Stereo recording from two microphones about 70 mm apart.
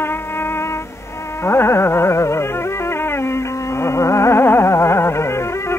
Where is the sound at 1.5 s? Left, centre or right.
Left.